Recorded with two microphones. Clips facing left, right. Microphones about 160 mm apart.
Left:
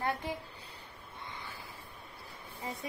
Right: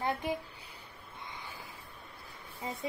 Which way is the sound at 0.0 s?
15° right (ahead or behind).